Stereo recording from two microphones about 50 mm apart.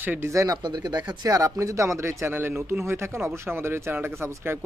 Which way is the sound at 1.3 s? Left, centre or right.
Right.